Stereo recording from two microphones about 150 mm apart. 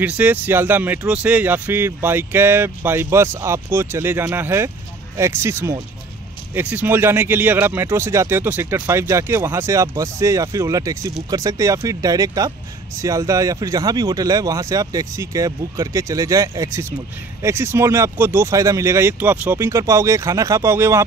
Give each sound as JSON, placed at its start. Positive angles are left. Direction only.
{"t": 0.0, "sound": "speech", "side_deg": -10}